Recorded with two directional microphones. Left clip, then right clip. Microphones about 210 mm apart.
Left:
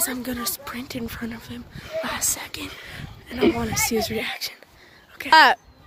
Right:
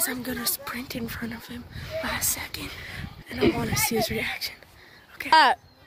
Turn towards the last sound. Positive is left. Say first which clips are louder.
# left 4 dB
turn(degrees=0)  # may be behind; listen again after turning